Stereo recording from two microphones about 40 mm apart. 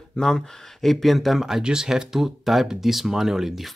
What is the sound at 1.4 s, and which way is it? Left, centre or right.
Speech, centre.